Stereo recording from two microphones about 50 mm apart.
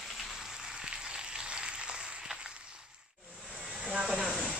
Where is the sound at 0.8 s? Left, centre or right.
Centre.